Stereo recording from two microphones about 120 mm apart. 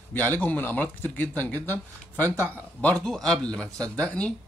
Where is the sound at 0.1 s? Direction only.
15° left (ahead or behind).